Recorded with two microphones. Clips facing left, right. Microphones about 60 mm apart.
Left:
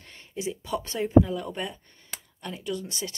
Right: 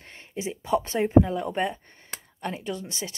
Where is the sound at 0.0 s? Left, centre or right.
Right.